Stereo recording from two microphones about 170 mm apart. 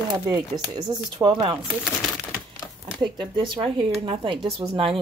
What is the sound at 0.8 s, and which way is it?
Speech, 25° right (ahead or behind).